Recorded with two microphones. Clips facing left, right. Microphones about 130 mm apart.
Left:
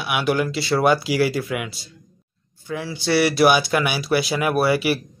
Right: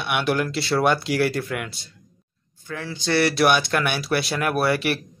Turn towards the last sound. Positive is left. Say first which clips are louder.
# left 3 dB
turn(degrees=5)  # may be behind; listen again after turning